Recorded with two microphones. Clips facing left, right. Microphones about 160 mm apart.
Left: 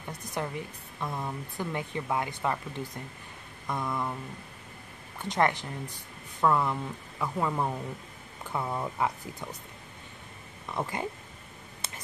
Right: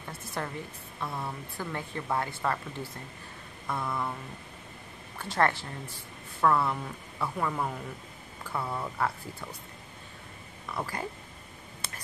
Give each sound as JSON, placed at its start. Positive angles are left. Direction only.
{"t": 0.1, "sound": "speech", "side_deg": 15}
{"t": 5.2, "sound": "speech", "side_deg": 20}
{"t": 10.7, "sound": "speech", "side_deg": 20}